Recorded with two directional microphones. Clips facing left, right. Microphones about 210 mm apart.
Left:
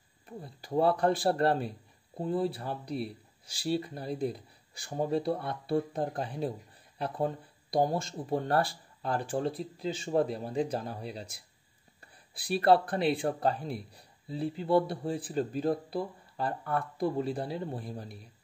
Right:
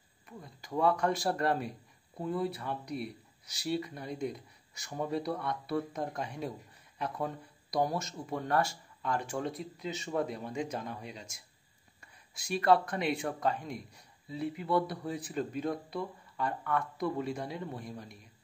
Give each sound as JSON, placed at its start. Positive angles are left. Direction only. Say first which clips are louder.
{"t": 0.3, "sound": "a man's voice", "louder": "left 5 dB", "side_deg": 35}